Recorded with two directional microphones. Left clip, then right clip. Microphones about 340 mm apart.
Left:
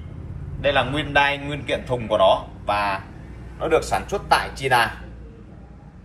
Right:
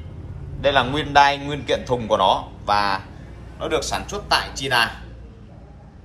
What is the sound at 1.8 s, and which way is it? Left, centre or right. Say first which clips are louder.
Speech: left 1 dB; right.